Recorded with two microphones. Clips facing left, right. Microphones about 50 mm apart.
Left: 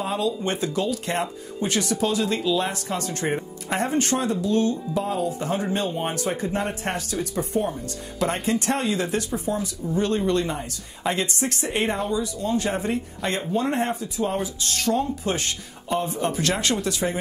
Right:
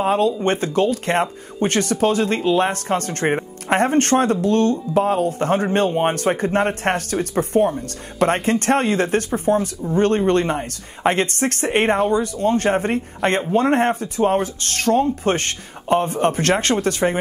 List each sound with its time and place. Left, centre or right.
0.0 s speech: right